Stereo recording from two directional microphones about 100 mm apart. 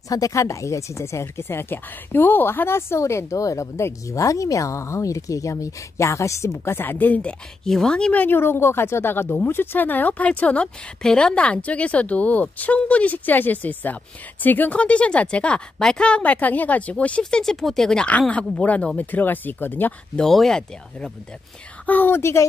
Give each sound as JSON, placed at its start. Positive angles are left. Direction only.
{"t": 0.1, "sound": "a woman's voice", "side_deg": 35}
{"t": 20.2, "sound": "speech", "side_deg": 5}
{"t": 21.8, "sound": "speech", "side_deg": 20}